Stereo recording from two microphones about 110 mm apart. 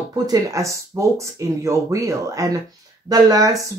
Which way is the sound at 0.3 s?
30° right (ahead or behind).